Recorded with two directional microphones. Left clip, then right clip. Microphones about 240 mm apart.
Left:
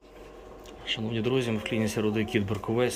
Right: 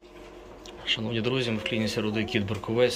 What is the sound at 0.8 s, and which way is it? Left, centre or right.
Speech, centre.